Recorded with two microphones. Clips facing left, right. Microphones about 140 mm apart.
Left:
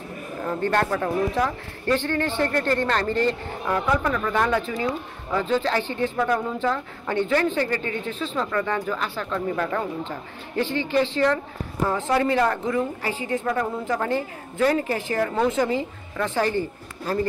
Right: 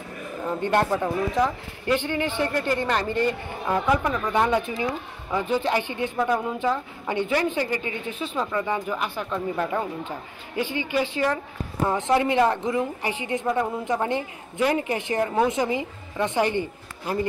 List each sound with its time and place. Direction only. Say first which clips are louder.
0.6 s speech: right 1 dB; 20° right (ahead or behind)